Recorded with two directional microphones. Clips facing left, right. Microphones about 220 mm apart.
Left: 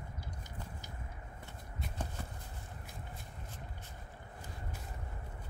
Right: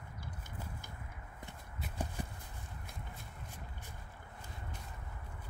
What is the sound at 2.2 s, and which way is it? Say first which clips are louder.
Clip-clop: right 3 dB; 15° right (ahead or behind).